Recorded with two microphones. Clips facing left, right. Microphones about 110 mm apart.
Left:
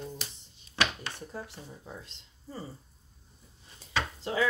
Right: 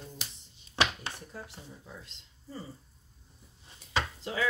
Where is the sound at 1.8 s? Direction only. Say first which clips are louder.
Left 3 dB; 35° left (ahead or behind).